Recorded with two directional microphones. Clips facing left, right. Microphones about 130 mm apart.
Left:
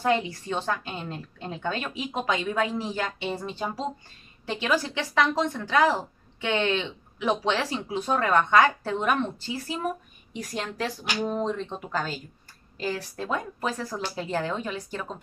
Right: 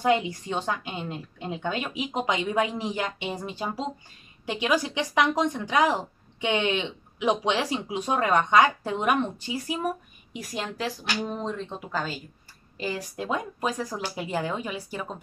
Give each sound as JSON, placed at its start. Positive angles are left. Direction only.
{"t": 0.0, "sound": "a woman's voice", "side_deg": -15}
{"t": 12.7, "sound": "a woman's voice", "side_deg": -10}